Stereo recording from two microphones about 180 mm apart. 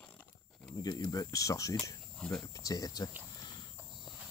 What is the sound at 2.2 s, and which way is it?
Speech, 5° left (ahead or behind).